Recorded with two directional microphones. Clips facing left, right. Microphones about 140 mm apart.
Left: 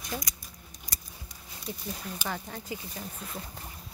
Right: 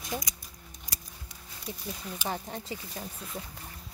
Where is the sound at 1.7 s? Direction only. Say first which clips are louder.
Left 1 dB; 20° right (ahead or behind).